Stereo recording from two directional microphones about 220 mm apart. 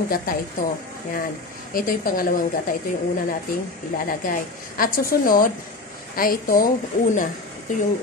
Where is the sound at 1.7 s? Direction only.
40° left (ahead or behind).